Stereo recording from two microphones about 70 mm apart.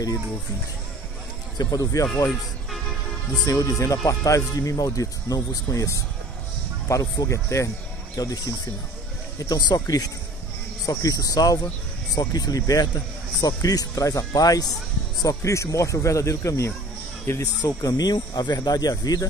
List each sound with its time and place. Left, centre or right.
1.6 s speech: left
3.4 s speech: left
8.2 s speech: left
15.2 s speech: left
17.4 s speech: left